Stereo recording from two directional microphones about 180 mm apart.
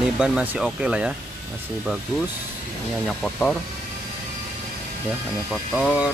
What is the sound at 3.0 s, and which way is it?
Speech, 5° left (ahead or behind).